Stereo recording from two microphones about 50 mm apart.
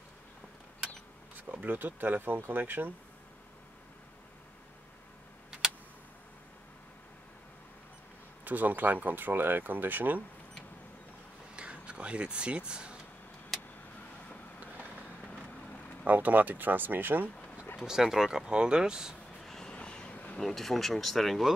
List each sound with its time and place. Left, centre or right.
1.3 s speech: right
8.5 s speech: right
11.5 s a sound: right
16.0 s speech: right
17.7 s speech: centre
19.4 s vehicle: centre
19.7 s vehicle: centre
20.3 s speech: centre